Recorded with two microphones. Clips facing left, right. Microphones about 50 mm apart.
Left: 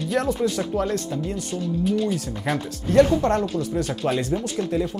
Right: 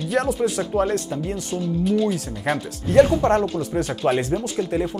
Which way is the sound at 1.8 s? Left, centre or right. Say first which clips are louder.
Right 2 dB; centre.